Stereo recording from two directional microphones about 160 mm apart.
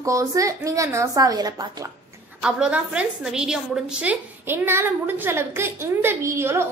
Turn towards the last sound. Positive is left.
turn(degrees=-15)  # may be behind; listen again after turning